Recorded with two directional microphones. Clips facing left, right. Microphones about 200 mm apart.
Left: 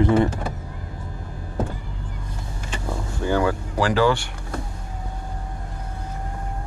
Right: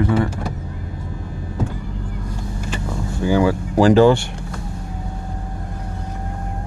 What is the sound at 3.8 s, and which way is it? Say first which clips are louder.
Speech: right 8 dB; 25° right (ahead or behind).